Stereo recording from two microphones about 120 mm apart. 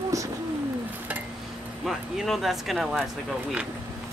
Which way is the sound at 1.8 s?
Centre (ahead or behind).